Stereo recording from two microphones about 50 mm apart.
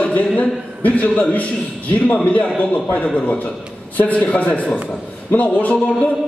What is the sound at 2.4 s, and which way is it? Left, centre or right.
Speech, left.